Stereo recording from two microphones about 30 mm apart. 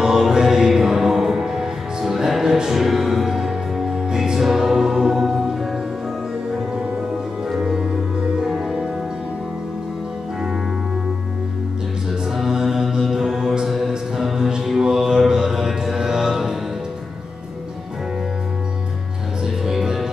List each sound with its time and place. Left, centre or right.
0.0 s music: centre
7.4 s music: centre
8.5 s music: centre
12.4 s mantra: centre
13.7 s music: centre
14.8 s mantra: centre
19.4 s music: centre